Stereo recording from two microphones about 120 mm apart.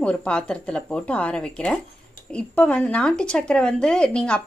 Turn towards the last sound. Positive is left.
turn(degrees=10)  # may be behind; listen again after turning